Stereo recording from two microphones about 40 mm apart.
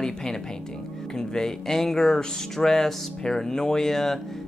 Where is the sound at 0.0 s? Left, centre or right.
Centre.